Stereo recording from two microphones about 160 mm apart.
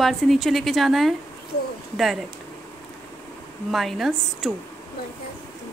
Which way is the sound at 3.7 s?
Centre (ahead or behind).